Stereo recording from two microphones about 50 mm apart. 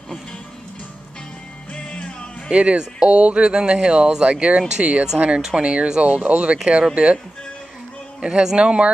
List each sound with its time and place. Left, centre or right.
1.7 s music: left
2.5 s speech: right
8.2 s a man's voice: right